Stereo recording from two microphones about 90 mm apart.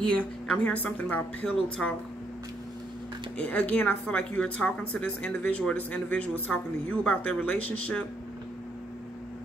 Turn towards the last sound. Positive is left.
turn(degrees=15)  # may be behind; listen again after turning